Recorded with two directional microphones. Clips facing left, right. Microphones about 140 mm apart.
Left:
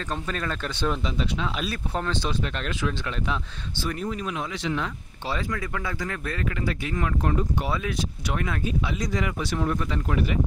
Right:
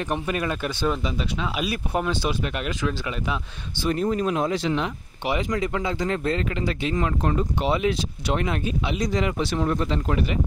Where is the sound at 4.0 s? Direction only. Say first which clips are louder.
Right 10 dB; 35° right (ahead or behind).